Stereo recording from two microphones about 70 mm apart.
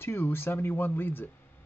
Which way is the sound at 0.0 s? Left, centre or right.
Left.